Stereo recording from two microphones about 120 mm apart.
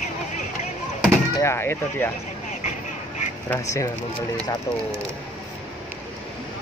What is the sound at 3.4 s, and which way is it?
Speech, 25° left (ahead or behind).